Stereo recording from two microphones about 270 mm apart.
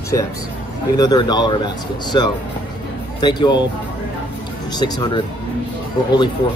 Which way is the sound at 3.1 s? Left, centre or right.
Centre.